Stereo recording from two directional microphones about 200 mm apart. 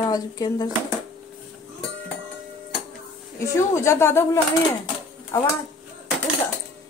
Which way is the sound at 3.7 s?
15° left (ahead or behind).